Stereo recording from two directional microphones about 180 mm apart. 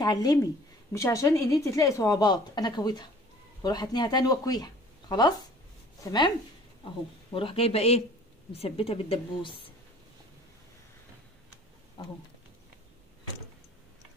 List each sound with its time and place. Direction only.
0.0 s a woman's voice: 20° left (ahead or behind)
7.3 s a woman's voice: 30° left (ahead or behind)